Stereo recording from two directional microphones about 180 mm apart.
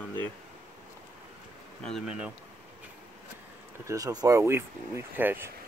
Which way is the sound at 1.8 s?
Centre (ahead or behind).